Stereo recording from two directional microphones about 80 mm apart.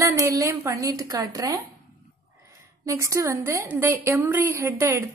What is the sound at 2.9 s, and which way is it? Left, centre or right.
A woman's voice, right.